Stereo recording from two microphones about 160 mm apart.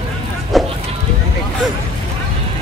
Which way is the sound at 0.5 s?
Centre (ahead or behind).